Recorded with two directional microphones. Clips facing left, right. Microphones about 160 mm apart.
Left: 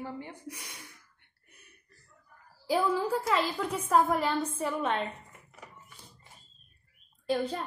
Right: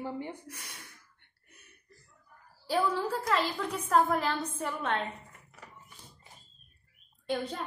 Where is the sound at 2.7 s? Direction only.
5° left (ahead or behind).